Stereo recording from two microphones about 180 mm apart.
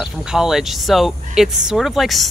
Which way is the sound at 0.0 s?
5° right (ahead or behind).